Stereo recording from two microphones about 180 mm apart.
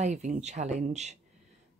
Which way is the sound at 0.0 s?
40° right (ahead or behind).